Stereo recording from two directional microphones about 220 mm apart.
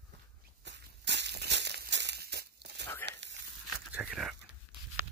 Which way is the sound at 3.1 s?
55° right (ahead or behind).